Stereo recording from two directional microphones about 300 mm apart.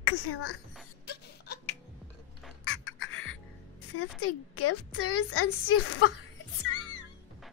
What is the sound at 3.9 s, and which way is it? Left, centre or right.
A woman's voice, left.